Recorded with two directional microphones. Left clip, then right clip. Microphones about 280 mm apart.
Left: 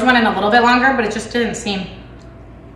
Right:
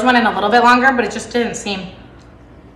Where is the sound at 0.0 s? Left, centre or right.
Centre.